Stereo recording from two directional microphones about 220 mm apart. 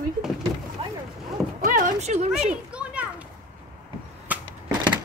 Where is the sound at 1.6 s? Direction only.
35° right (ahead or behind).